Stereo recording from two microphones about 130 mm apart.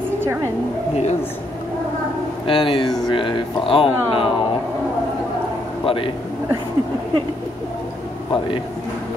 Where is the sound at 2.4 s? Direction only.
40° left (ahead or behind).